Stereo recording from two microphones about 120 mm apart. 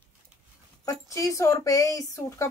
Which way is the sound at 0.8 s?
25° left (ahead or behind).